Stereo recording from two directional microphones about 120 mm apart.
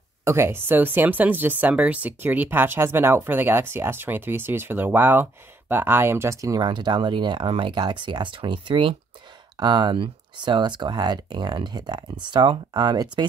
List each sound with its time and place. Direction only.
0.2 s speech: 20° right (ahead or behind); by 13.3 s 35° right (ahead or behind)